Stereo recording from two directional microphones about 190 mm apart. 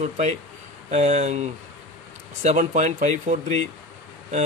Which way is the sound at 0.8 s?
35° right (ahead or behind).